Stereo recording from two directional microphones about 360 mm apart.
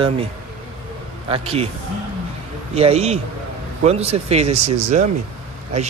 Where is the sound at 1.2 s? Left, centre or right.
Centre.